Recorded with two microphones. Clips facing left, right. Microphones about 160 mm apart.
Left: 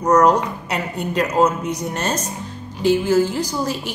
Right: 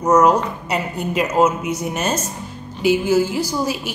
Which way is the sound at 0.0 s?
5° right (ahead or behind).